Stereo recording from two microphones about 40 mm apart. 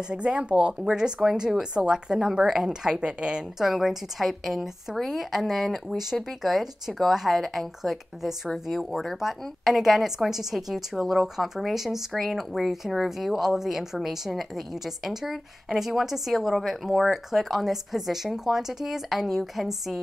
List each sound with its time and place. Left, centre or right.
0.1 s speech: right
3.5 s a woman's voice: centre